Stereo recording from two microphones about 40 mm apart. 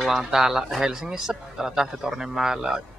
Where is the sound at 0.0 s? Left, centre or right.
Centre.